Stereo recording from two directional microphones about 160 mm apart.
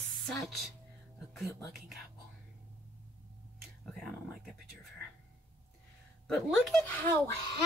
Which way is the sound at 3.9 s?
Centre (ahead or behind).